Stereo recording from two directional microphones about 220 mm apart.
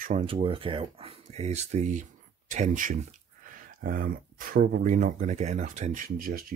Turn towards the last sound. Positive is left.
turn(degrees=-40)  # may be behind; listen again after turning